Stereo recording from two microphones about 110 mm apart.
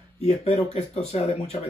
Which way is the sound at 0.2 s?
70° left (ahead or behind).